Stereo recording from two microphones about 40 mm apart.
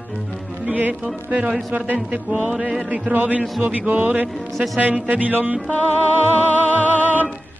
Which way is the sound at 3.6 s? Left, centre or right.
Right.